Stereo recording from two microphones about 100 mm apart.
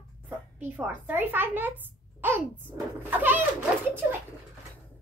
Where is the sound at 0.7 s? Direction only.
20° right (ahead or behind).